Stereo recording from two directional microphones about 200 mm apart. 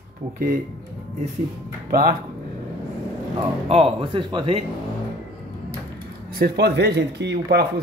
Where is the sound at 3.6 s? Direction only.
30° right (ahead or behind).